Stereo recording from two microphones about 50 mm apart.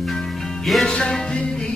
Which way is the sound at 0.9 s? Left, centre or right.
Centre.